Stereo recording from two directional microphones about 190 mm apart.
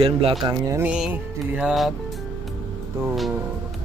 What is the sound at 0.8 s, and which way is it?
Music, 5° right (ahead or behind).